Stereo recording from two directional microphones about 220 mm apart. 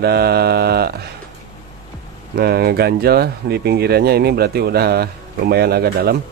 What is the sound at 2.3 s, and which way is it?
Speech, 45° right (ahead or behind).